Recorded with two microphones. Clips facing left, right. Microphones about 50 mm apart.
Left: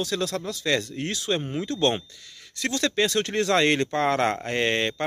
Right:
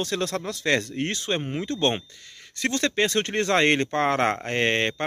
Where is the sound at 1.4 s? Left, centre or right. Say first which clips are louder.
Left 1 dB; right.